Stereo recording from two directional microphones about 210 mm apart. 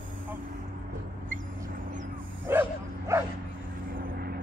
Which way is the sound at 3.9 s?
45° right (ahead or behind).